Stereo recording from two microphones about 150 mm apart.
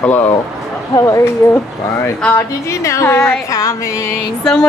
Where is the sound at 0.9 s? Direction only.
20° left (ahead or behind).